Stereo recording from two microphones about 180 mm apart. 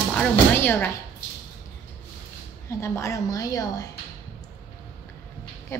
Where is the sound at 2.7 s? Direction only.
15° left (ahead or behind).